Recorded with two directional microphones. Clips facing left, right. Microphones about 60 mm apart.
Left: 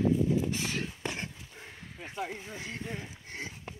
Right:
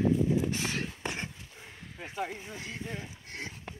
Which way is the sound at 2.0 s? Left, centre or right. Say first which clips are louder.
Right 1 dB; centre.